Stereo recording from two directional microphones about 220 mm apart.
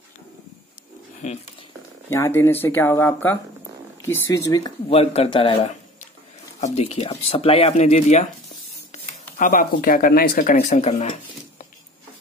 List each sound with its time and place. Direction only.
2.0 s speech: 10° left (ahead or behind)
6.6 s speech: 30° left (ahead or behind)
8.9 s a sound: 30° left (ahead or behind)
9.4 s speech: 40° left (ahead or behind)